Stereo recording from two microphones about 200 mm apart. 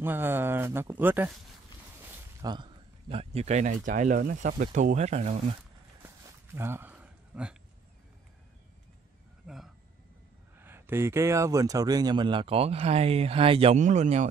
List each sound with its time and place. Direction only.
0.0 s speech: 10° right (ahead or behind)
2.4 s speech: 20° right (ahead or behind)
6.0 s a sound: 10° right (ahead or behind)
10.6 s speech: 10° right (ahead or behind); by 14.3 s 35° right (ahead or behind)